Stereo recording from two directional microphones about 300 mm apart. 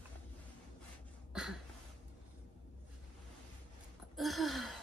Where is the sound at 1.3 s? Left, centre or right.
Centre.